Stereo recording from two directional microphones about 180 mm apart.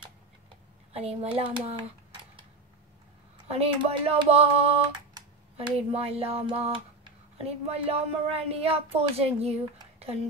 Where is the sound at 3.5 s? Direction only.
35° right (ahead or behind).